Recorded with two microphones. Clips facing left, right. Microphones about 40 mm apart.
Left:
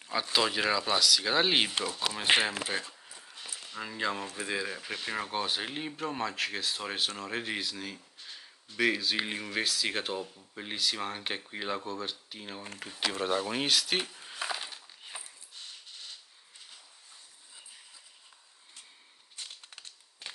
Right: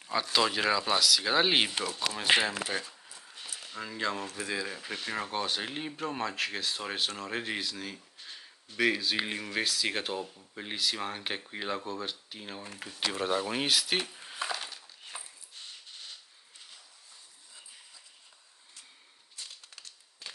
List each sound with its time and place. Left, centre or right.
0.0 s speech: centre
2.2 s speech: left
2.6 s speech: centre
15.1 s dog: centre
19.3 s crumpling: left